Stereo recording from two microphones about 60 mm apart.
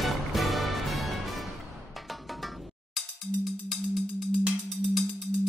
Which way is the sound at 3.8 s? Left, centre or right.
Centre.